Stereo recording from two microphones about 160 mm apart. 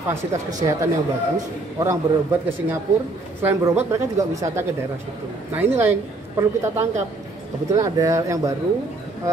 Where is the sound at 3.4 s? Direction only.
15° right (ahead or behind).